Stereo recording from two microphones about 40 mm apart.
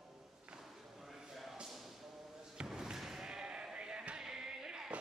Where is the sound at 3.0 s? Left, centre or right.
Centre.